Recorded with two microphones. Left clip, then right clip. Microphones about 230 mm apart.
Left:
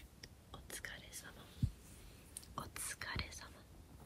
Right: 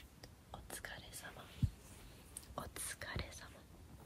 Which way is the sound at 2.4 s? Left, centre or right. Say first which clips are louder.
Even; centre.